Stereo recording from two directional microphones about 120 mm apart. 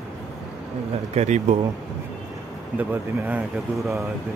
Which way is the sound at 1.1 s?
70° right (ahead or behind).